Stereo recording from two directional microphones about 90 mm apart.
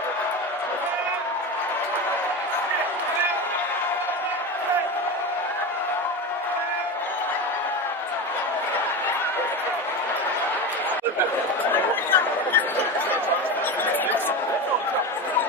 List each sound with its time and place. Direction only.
11.7 s chatter: 20° left (ahead or behind)